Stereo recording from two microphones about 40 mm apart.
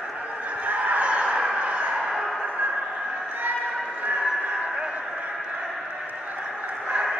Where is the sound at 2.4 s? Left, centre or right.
Right.